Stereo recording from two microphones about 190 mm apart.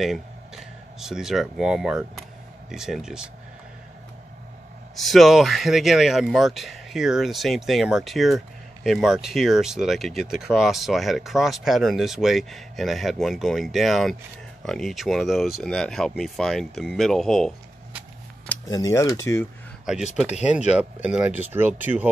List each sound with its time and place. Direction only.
0.0 s speech: centre (ahead or behind)
4.9 s speech: centre (ahead or behind)
18.7 s speech: 15° left (ahead or behind)
20.7 s speech: 5° right (ahead or behind)